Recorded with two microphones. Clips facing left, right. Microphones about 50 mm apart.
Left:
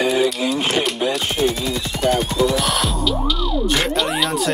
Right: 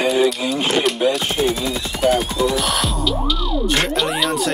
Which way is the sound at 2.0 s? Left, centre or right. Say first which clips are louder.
Right 1 dB; centre.